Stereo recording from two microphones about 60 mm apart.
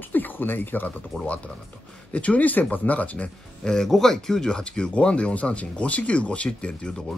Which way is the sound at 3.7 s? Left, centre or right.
Centre.